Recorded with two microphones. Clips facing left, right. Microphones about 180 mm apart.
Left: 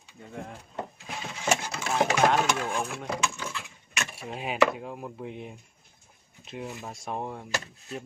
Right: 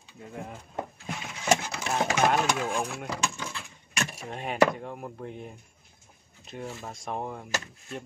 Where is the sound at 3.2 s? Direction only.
35° right (ahead or behind).